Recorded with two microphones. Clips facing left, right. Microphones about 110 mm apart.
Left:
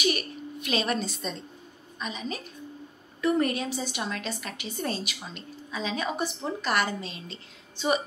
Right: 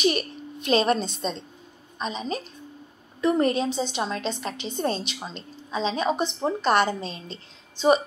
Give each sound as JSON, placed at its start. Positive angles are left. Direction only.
{"t": 0.7, "sound": "a woman's voice", "side_deg": -35}